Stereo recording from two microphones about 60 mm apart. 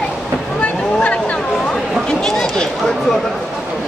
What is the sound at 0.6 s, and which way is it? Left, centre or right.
Boat, left.